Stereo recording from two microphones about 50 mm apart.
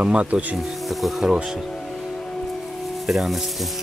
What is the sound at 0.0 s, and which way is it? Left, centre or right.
Speech, right.